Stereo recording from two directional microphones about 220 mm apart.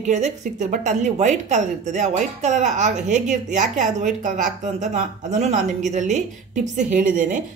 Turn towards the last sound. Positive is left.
turn(degrees=-35)  # may be behind; listen again after turning